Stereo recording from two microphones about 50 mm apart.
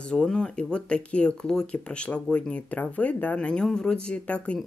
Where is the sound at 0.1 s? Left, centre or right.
Centre.